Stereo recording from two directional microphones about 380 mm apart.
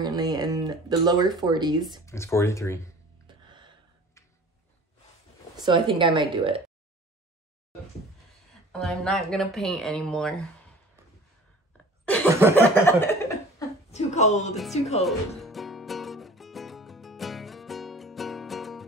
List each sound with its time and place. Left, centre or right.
0.0 s a sound: centre
1.3 s speech: centre
2.0 s speech: centre
3.3 s gasp: centre
5.7 s speech: centre
8.7 s speech: centre
11.7 s cough: centre
12.5 s speech: centre
13.6 s speech: centre
15.0 s music: centre